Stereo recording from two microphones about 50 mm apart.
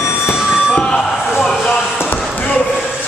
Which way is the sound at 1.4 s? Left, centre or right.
Centre.